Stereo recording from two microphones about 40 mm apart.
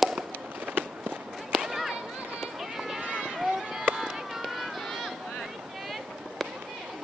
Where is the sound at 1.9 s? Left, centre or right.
Centre.